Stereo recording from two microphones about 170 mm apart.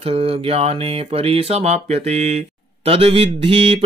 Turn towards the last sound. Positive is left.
turn(degrees=-35)  # may be behind; listen again after turning